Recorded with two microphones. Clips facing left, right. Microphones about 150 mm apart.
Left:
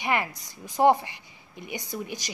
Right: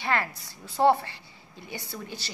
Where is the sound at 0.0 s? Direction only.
15° left (ahead or behind).